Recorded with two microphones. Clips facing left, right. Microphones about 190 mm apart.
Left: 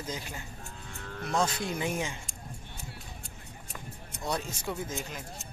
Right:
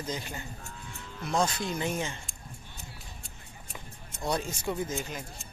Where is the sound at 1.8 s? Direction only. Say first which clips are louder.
Even; 10° left (ahead or behind).